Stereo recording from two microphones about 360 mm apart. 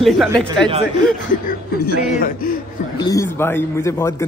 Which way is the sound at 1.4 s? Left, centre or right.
Left.